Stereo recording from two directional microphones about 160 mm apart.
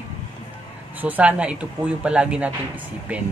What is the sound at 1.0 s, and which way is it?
Speech, 10° right (ahead or behind).